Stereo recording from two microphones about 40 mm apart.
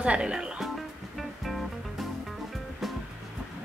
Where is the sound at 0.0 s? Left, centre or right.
Right.